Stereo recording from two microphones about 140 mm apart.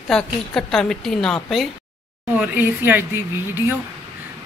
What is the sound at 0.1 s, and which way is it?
A woman's voice, centre (ahead or behind).